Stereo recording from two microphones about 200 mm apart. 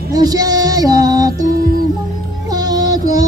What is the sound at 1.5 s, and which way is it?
Music, 45° right (ahead or behind).